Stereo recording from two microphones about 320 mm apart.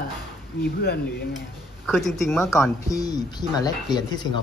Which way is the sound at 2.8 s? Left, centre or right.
Centre.